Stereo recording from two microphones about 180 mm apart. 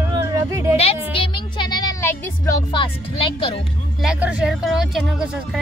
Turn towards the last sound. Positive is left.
turn(degrees=-5)  # may be behind; listen again after turning